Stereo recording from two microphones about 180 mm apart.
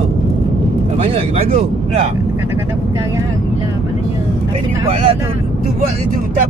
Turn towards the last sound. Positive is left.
turn(degrees=-30)  # may be behind; listen again after turning